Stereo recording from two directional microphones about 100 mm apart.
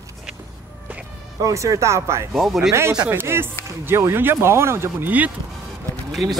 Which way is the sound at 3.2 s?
25° right (ahead or behind).